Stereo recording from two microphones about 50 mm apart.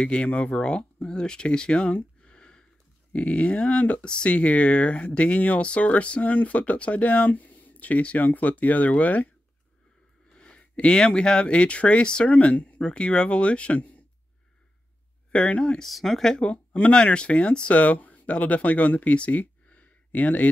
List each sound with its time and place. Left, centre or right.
0.0 s speech: centre
2.2 s a sound: centre
3.3 s speech: centre
10.3 s speech: centre
15.3 s speech: left
15.8 s speech: centre
16.4 s speech: left